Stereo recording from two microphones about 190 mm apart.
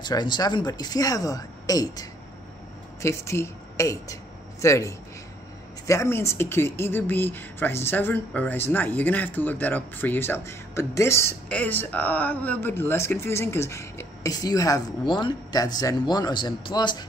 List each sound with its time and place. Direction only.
0.0 s speech: 25° left (ahead or behind)